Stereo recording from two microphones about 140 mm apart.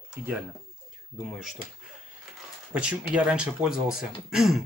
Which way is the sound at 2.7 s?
10° right (ahead or behind).